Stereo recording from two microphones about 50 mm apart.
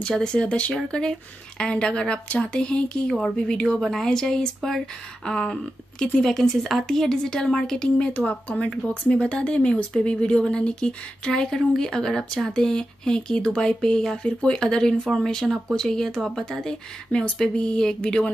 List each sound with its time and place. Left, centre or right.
0.1 s speech: centre
3.1 s speech: centre
8.3 s speech: left